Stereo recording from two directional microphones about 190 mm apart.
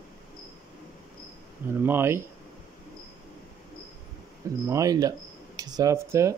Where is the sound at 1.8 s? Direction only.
10° right (ahead or behind).